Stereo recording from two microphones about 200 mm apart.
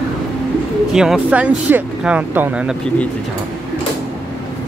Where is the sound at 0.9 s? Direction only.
5° right (ahead or behind).